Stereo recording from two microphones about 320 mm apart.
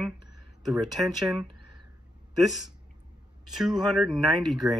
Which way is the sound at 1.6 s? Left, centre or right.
Right.